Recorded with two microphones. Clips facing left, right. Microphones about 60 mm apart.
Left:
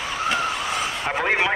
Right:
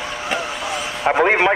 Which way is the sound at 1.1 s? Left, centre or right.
Right.